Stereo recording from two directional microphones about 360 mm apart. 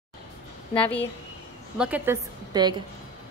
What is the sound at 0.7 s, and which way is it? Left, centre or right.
A woman's voice, centre.